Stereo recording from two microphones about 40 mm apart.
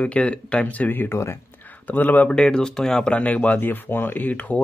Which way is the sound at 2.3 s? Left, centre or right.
Left.